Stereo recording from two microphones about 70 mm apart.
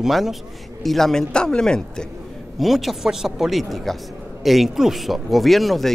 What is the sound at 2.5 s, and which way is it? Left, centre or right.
A man's voice, centre.